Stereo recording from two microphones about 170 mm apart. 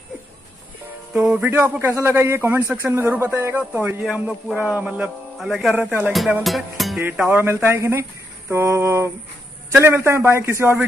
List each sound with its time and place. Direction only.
1.1 s a man's voice: 5° right (ahead or behind)
6.1 s music: centre (ahead or behind)
7.0 s a man's voice: 10° right (ahead or behind)